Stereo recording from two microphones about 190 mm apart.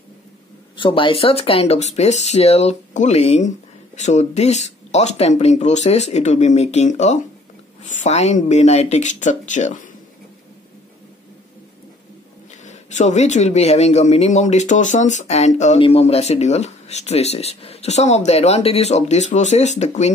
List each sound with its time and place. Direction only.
0.7 s speech: 25° left (ahead or behind)
12.6 s speech: 40° left (ahead or behind)